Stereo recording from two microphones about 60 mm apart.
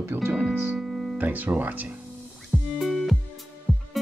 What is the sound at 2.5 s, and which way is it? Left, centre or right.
Music, centre.